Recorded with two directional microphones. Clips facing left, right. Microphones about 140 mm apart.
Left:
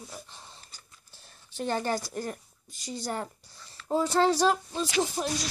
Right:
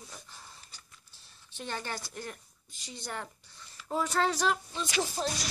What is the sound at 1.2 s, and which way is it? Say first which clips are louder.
A woman's voice: left 9 dB; 40° left (ahead or behind).